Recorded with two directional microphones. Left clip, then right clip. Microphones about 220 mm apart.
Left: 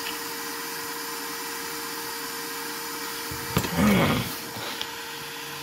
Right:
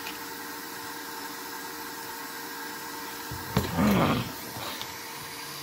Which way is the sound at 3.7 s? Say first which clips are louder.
Left 2 dB; 25° left (ahead or behind).